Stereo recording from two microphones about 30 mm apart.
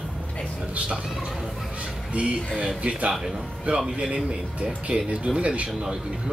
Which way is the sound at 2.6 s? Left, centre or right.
Right.